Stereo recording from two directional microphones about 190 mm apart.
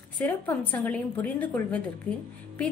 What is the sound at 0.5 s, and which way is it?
A woman's voice, 10° left (ahead or behind).